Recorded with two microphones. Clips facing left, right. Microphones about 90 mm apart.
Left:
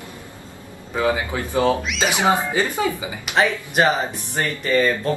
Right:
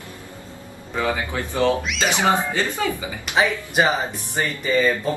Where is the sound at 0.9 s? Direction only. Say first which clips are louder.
Left 2 dB; 15° left (ahead or behind).